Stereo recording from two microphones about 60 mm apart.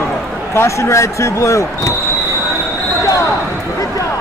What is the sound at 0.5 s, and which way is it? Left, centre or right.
Speech, left.